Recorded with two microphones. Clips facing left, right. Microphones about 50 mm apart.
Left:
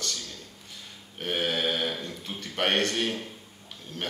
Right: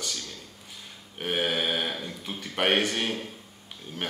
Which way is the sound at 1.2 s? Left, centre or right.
Centre.